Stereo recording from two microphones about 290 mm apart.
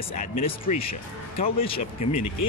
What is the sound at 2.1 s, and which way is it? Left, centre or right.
Speech, left.